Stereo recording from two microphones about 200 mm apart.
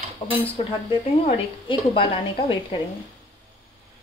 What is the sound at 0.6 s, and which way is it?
A woman's voice, 30° left (ahead or behind).